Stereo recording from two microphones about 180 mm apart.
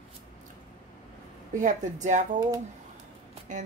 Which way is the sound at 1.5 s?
45° right (ahead or behind).